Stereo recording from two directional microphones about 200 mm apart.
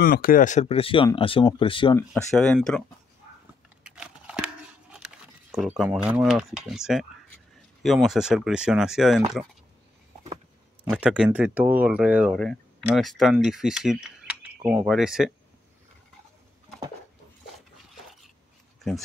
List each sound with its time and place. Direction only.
0.0 s speech: 45° left (ahead or behind); by 2.0 s 25° left (ahead or behind)
2.0 s speech: 5° left (ahead or behind)
3.8 s a sound: 5° right (ahead or behind)
7.8 s speech: centre (ahead or behind)
10.9 s speech: 5° right (ahead or behind)